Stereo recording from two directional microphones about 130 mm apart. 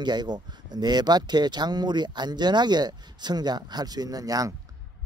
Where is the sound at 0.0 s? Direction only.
35° right (ahead or behind).